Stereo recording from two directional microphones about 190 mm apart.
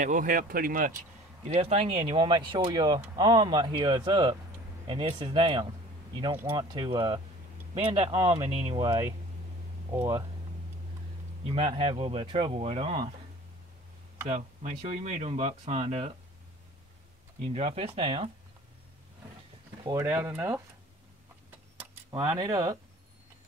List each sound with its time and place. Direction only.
0.0 s speech: 40° right (ahead or behind)
1.5 s speech: 35° right (ahead or behind)
8.5 s speech: 35° right (ahead or behind)
8.7 s speech: 15° right (ahead or behind)
11.4 s speech: 30° right (ahead or behind)
14.2 s speech: 35° right (ahead or behind)
17.4 s speech: 30° right (ahead or behind)
19.8 s speech: 15° right (ahead or behind)
21.7 s speech: 15° right (ahead or behind)